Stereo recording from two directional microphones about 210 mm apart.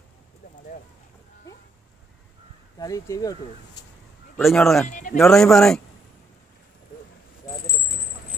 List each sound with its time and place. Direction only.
2.8 s speech: 15° left (ahead or behind)
4.4 s speech: centre (ahead or behind)
4.8 s speech: 35° left (ahead or behind)
5.1 s speech: centre (ahead or behind)